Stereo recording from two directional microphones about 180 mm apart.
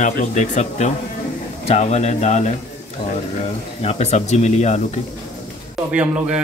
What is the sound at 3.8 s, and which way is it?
Speech, 35° left (ahead or behind).